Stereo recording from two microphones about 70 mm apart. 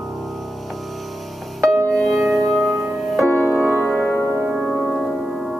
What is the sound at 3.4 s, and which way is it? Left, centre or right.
Music, centre.